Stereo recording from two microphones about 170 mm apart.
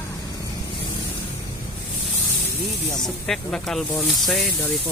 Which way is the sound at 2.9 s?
Centre (ahead or behind).